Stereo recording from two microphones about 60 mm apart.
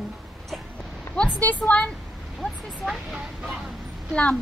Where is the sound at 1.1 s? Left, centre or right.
Left.